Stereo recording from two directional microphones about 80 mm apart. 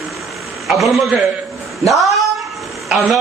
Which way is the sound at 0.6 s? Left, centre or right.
Centre.